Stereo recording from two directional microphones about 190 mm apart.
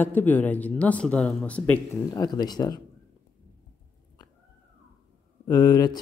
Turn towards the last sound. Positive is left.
turn(degrees=20)  # may be behind; listen again after turning